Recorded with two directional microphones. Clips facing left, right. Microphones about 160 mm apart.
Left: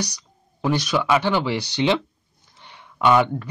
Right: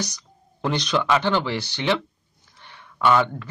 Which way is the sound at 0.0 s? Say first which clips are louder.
Left 1 dB; 10° left (ahead or behind).